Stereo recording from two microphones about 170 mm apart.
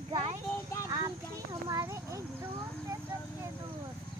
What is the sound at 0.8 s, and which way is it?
Speech, 20° right (ahead or behind).